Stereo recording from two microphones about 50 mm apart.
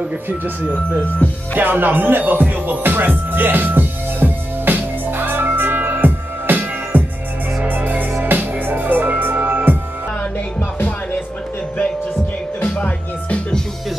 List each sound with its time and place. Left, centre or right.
0.3 s speech: right
1.5 s music: right
12.6 s music: left